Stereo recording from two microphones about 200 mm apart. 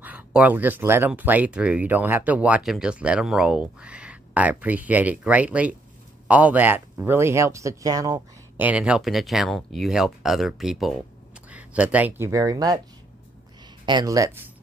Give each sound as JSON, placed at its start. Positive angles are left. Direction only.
{"t": 0.0, "sound": "speech", "side_deg": -5}
{"t": 13.8, "sound": "speech", "side_deg": -20}